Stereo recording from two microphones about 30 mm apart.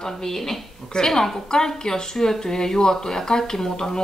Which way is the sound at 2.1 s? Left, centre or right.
Centre.